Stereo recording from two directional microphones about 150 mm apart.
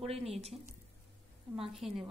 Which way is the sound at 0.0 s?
40° right (ahead or behind).